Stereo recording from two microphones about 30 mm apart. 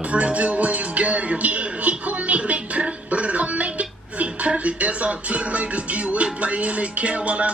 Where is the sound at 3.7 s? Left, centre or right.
Right.